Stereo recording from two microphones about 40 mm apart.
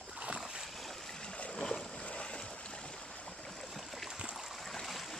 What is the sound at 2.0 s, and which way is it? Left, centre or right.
Boat, left.